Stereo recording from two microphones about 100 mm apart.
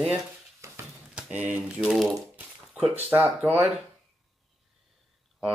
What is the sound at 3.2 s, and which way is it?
Speech, 15° right (ahead or behind).